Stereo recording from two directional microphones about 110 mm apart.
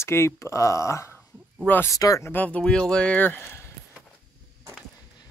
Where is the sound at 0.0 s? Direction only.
25° left (ahead or behind).